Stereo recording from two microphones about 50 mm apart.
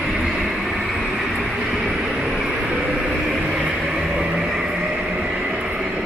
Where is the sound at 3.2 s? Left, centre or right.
Centre.